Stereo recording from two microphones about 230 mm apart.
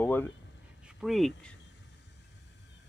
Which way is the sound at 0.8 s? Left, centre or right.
Centre.